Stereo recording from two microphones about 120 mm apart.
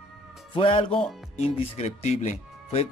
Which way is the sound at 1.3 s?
70° left (ahead or behind).